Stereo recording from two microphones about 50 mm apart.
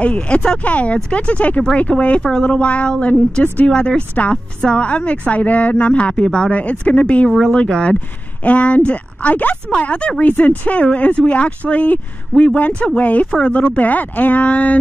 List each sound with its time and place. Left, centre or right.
0.0 s a woman's voice: left
7.2 s speech: centre
7.6 s a woman's voice: centre
10.3 s a woman's voice: left